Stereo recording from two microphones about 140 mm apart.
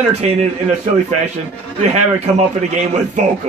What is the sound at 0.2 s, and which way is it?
Speech, 50° right (ahead or behind).